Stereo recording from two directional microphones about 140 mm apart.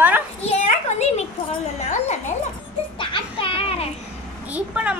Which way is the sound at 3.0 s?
40° left (ahead or behind).